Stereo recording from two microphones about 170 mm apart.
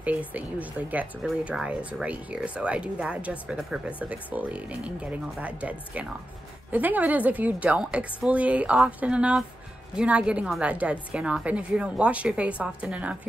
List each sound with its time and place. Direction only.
0.3 s speech: 10° right (ahead or behind)